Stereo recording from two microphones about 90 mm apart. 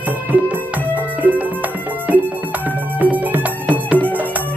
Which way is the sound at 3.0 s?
20° right (ahead or behind).